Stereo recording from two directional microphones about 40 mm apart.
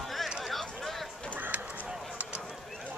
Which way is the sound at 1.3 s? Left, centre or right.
Right.